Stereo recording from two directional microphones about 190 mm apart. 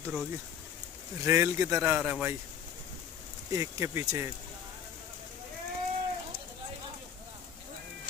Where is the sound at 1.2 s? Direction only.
15° right (ahead or behind).